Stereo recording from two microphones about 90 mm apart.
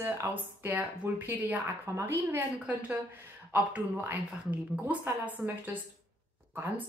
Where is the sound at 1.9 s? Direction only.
30° right (ahead or behind).